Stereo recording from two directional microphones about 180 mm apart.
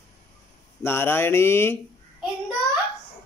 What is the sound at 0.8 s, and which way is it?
Speech, 10° left (ahead or behind).